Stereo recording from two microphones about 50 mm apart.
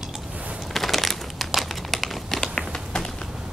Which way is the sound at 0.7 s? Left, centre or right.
Centre.